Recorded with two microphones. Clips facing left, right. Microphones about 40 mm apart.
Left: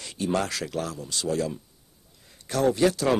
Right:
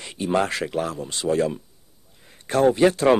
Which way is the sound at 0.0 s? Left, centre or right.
Right.